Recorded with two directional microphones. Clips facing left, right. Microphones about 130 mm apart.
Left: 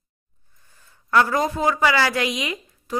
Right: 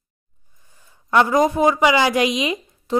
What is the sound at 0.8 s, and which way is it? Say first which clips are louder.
A woman's voice: right 2 dB; 15° right (ahead or behind).